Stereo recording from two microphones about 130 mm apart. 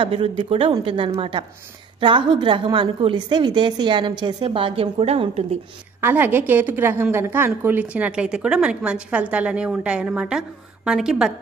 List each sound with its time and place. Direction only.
0.0 s a woman's voice: 45° right (ahead or behind)
5.9 s a woman's voice: 15° right (ahead or behind)